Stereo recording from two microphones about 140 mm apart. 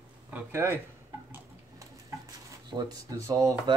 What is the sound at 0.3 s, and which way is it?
Speech, 15° right (ahead or behind).